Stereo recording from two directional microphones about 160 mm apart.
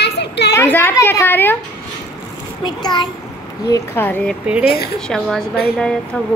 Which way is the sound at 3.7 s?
10° left (ahead or behind).